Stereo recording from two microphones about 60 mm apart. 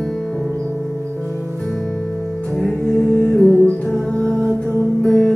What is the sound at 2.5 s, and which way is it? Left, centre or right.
Music, centre.